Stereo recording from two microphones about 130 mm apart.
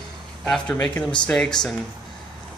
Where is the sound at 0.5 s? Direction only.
10° left (ahead or behind).